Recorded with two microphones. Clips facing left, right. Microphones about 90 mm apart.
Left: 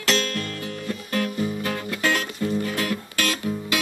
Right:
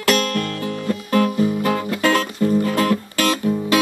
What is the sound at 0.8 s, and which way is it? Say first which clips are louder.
Music: right 8 dB; 45° right (ahead or behind).